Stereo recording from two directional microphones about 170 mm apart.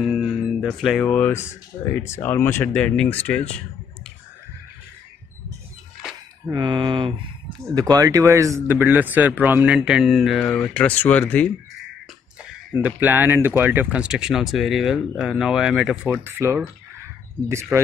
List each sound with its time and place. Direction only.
0.0 s speech: 5° right (ahead or behind)
6.5 s speech: 25° right (ahead or behind); by 11.5 s 10° left (ahead or behind)
12.7 s speech: 10° right (ahead or behind)